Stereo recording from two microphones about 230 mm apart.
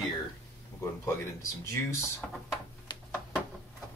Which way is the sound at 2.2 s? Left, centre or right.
Centre.